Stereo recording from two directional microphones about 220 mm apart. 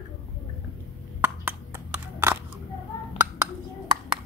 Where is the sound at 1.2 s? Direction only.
10° right (ahead or behind).